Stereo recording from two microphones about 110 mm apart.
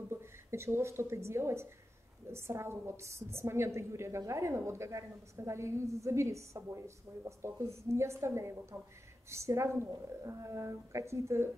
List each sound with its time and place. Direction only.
0.1 s a woman's voice: 25° right (ahead or behind)